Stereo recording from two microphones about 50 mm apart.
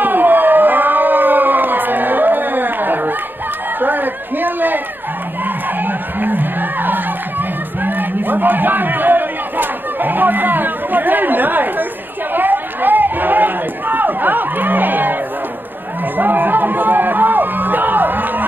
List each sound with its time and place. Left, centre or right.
0.0 s a sound: right
5.4 s crowd: right
12.4 s chatter: right
16.2 s music: right